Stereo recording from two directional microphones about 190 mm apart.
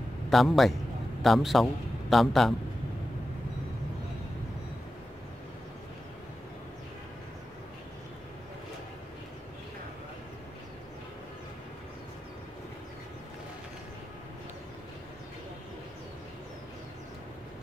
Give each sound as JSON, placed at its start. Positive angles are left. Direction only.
{"t": 0.3, "sound": "a man's voice", "side_deg": 0}